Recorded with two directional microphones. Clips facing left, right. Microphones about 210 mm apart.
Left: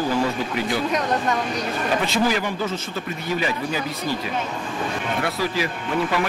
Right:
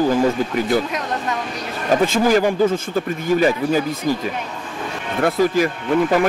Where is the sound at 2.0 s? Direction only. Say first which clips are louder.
Right 9 dB; 45° right (ahead or behind).